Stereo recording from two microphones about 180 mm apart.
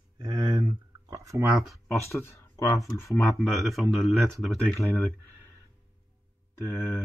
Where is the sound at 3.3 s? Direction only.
Centre (ahead or behind).